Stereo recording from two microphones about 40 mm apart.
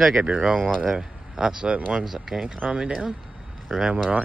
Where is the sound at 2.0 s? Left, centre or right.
Centre.